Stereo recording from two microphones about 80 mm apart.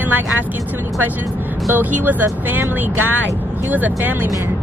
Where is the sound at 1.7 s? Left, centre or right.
Right.